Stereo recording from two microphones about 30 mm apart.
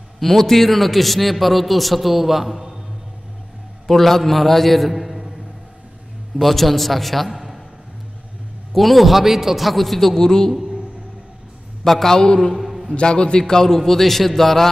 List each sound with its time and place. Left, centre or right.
0.2 s a man's voice: centre
3.8 s a man's voice: centre
6.4 s a man's voice: centre
8.7 s a man's voice: centre
10.1 s a woman's voice: centre
11.8 s a man's voice: centre
12.5 s a sound: centre
13.0 s a woman's voice: left
13.4 s a man's voice: centre